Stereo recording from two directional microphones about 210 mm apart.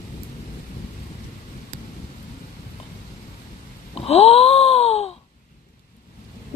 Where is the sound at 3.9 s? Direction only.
30° left (ahead or behind).